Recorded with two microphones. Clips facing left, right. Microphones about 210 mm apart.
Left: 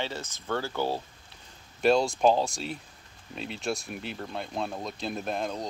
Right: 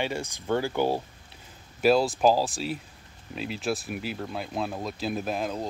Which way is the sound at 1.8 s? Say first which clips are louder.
Right 1 dB; 5° right (ahead or behind).